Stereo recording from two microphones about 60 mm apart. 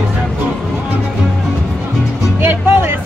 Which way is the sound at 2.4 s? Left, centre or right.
Right.